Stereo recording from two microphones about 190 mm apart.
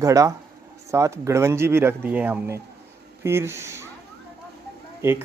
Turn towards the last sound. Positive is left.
turn(degrees=-10)  # may be behind; listen again after turning